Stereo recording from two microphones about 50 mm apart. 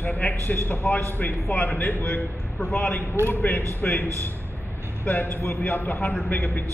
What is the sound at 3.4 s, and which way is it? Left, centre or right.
A man's voice, left.